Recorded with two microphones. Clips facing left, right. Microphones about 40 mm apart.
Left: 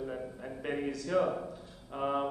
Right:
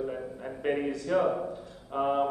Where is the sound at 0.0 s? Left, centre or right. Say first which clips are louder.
Right 4 dB; centre.